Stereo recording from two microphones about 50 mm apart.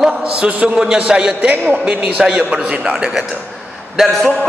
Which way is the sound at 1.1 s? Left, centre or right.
Centre.